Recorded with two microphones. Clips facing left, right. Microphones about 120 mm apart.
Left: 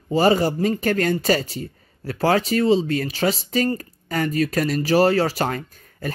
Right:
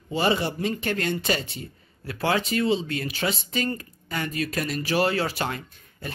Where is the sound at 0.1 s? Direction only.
40° left (ahead or behind).